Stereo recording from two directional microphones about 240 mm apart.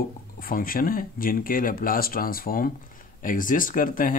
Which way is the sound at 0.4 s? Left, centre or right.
Left.